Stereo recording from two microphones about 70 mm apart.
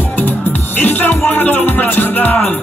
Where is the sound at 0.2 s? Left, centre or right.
Left.